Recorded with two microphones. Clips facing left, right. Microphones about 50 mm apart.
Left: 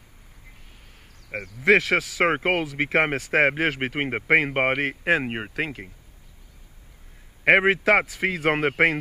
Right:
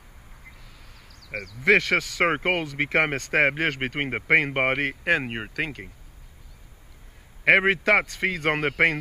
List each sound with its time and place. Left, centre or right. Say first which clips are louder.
0.7 s a sound: right 2 dB; right
1.6 s speech: left 1 dB; centre
4.8 s speech: left 1 dB; centre
5.2 s speech: left 1 dB; centre
7.5 s speech: left 1 dB; centre
8.3 s speech: left 4 dB; left